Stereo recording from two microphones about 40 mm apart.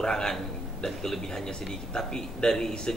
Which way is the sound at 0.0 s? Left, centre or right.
Centre.